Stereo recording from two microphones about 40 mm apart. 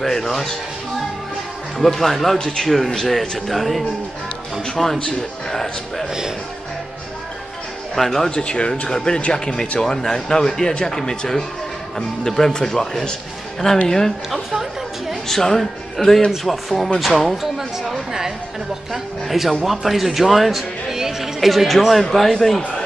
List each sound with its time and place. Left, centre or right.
0.0 s speech: centre
1.8 s speech: centre
2.3 s speech: centre
2.7 s speech: centre
7.9 s speech: centre
8.4 s speech: left
14.3 s a woman's voice: centre
15.2 s speech: centre
19.2 s speech: centre
20.9 s music: centre
22.1 s speech: centre